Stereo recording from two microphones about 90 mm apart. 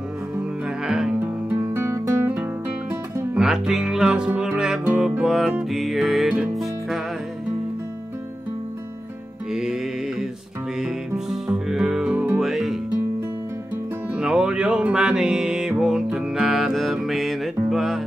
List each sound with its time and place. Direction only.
0.4 s music: 5° right (ahead or behind)
1.2 s music: 20° right (ahead or behind)
1.8 s music: 35° right (ahead or behind)
3.3 s music: 5° right (ahead or behind)
9.5 s music: 5° right (ahead or behind)
10.8 s music: 5° right (ahead or behind)
14.1 s music: 10° right (ahead or behind)